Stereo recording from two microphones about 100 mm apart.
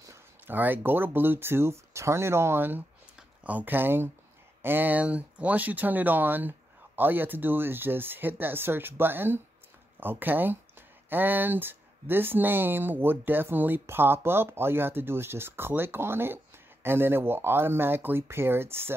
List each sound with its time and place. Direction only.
0.5 s speech: 20° right (ahead or behind)